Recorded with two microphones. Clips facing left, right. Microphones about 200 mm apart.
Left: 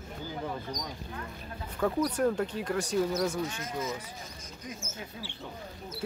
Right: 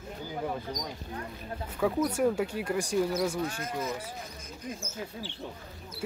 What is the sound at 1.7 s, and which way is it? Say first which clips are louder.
Speech: right 1 dB; 5° right (ahead or behind).